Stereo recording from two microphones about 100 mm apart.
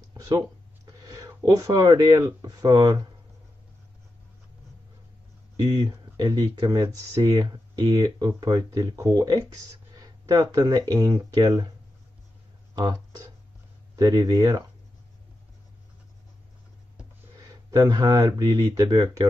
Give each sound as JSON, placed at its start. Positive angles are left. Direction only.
{"t": 1.0, "sound": "speech", "side_deg": -40}
{"t": 5.6, "sound": "speech", "side_deg": -40}
{"t": 13.9, "sound": "speech", "side_deg": -40}
{"t": 17.6, "sound": "speech", "side_deg": -40}